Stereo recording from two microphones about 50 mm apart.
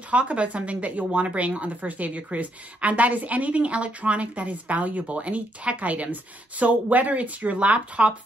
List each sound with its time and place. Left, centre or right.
0.1 s speech: right